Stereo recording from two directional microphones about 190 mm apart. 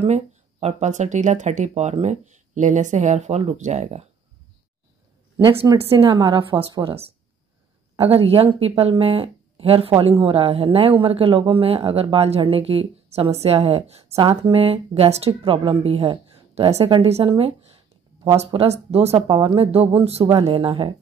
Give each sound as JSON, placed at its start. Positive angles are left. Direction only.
{"t": 0.0, "sound": "speech", "side_deg": -35}
{"t": 5.5, "sound": "speech", "side_deg": -15}
{"t": 5.9, "sound": "speech", "side_deg": -25}